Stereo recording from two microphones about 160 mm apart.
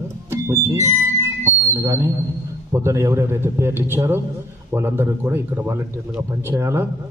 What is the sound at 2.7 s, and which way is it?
A man's voice, 15° right (ahead or behind).